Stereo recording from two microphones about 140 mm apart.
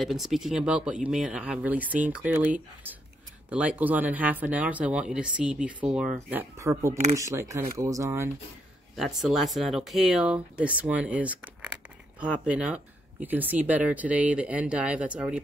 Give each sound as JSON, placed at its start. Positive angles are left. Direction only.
{"t": 0.0, "sound": "speech", "side_deg": 0}
{"t": 6.6, "sound": "speech", "side_deg": -20}
{"t": 8.9, "sound": "speech", "side_deg": 0}